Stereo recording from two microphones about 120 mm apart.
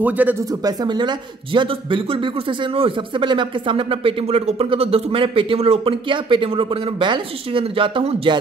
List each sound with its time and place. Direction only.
0.0 s speech: 15° right (ahead or behind)
0.7 s speech: 40° right (ahead or behind)